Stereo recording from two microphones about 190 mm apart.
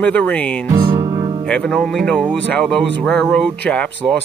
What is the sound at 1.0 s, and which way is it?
Music, 30° right (ahead or behind).